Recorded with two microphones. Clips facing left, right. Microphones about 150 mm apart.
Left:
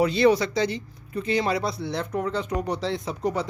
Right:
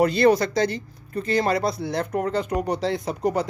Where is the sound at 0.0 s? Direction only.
45° right (ahead or behind).